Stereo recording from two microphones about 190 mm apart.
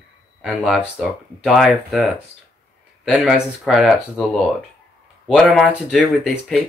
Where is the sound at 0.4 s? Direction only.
Centre (ahead or behind).